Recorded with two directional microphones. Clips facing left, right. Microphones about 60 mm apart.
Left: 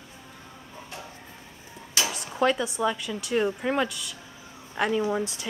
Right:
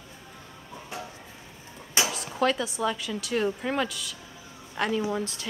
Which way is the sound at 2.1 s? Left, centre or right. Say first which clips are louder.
Left 4 dB; centre.